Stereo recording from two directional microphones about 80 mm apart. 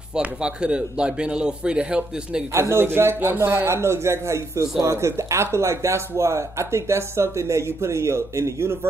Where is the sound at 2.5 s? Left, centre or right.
Right.